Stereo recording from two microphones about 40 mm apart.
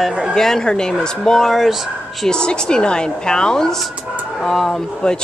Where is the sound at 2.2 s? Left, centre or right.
Left.